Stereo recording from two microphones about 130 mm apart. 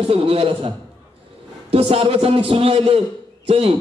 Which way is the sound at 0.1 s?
45° right (ahead or behind).